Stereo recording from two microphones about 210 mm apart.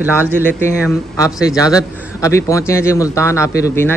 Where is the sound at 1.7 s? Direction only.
15° left (ahead or behind).